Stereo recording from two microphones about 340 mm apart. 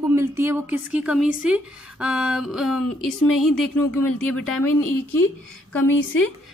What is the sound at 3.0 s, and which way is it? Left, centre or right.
Speech, left.